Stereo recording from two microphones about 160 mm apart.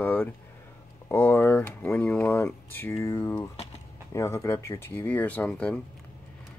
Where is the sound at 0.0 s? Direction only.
10° left (ahead or behind).